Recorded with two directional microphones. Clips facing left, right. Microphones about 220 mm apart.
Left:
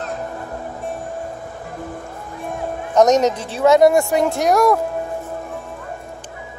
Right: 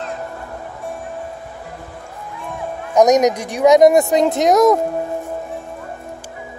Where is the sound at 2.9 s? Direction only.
15° right (ahead or behind).